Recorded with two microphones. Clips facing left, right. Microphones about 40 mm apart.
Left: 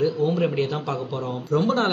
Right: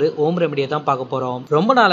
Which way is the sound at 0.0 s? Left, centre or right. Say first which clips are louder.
Right 4 dB; right.